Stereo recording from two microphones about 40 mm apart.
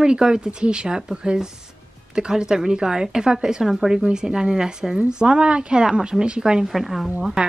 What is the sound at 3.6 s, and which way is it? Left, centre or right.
Speech, centre.